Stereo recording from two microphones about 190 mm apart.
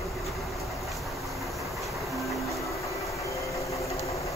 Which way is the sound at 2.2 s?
Centre (ahead or behind).